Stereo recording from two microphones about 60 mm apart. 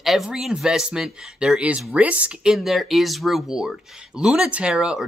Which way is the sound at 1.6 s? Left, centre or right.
Right.